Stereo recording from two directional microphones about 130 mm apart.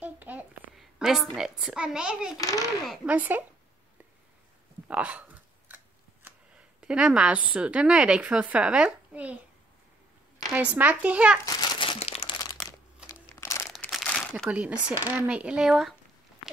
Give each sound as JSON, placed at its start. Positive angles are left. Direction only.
{"t": 0.0, "sound": "a sound", "side_deg": -15}
{"t": 0.7, "sound": "a child's voice", "side_deg": -5}
{"t": 2.3, "sound": "a child's voice", "side_deg": 25}
{"t": 2.9, "sound": "a child's voice", "side_deg": -10}
{"t": 4.8, "sound": "a sound", "side_deg": -10}
{"t": 6.8, "sound": "a child's voice", "side_deg": -10}
{"t": 10.5, "sound": "a child's voice", "side_deg": -10}
{"t": 11.4, "sound": "crumpling", "side_deg": 35}
{"t": 12.0, "sound": "crumpling", "side_deg": 50}
{"t": 13.3, "sound": "crumpling", "side_deg": 20}
{"t": 14.0, "sound": "crumpling", "side_deg": 5}
{"t": 14.5, "sound": "a child's voice", "side_deg": -10}